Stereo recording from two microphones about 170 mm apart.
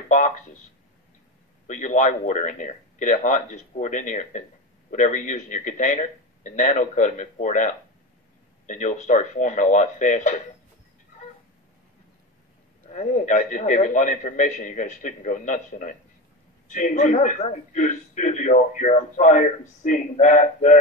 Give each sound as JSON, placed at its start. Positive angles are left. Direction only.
{"t": 0.1, "sound": "a man's voice", "side_deg": 45}
{"t": 1.7, "sound": "a man's voice", "side_deg": 45}
{"t": 12.8, "sound": "a man's voice", "side_deg": 45}